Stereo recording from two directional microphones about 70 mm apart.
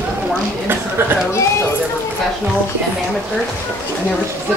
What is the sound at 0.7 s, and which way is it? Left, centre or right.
Speech, right.